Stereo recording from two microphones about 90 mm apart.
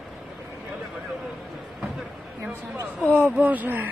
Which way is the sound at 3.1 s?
15° right (ahead or behind).